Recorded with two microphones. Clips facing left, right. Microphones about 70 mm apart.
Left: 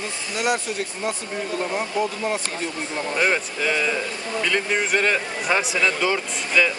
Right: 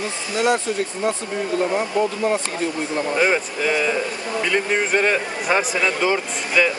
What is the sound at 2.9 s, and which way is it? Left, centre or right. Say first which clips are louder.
Speech: right 2 dB; centre.